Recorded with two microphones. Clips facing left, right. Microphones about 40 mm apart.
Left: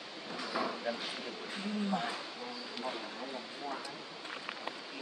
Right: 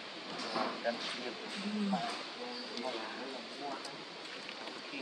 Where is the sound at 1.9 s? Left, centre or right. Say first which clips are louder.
Left 2 dB; left.